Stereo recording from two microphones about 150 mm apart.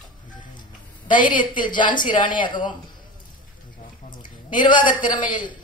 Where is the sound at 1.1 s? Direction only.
60° left (ahead or behind).